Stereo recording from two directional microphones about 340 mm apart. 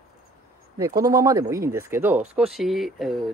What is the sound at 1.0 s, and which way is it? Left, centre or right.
Speech, centre.